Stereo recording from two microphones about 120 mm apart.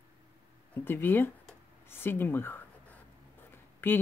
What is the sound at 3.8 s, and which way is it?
Speech, 20° left (ahead or behind).